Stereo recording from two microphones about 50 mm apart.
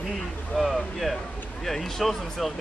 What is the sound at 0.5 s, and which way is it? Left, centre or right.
Speech, centre.